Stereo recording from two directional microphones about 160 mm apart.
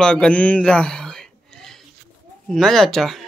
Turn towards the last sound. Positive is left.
turn(degrees=0)  # may be behind; listen again after turning